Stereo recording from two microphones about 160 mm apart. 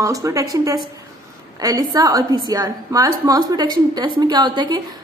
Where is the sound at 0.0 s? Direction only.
20° right (ahead or behind).